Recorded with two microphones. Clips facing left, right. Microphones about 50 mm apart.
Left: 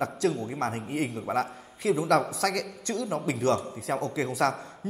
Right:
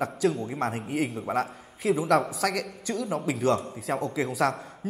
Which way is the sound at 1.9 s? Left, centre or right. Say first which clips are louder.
Right 1 dB; centre.